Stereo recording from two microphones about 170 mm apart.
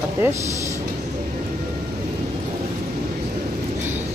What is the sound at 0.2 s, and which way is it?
Speech, 15° right (ahead or behind).